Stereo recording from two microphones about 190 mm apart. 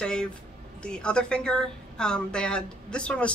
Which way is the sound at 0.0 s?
5° left (ahead or behind).